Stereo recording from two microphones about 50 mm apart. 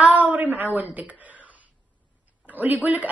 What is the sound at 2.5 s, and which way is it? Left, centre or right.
Speech, right.